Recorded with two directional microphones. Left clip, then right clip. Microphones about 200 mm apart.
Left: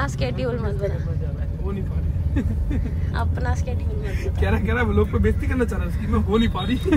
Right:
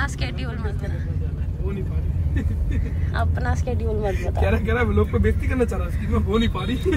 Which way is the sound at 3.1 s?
10° left (ahead or behind).